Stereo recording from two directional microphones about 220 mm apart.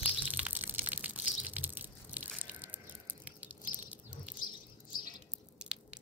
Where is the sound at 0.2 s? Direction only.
5° right (ahead or behind).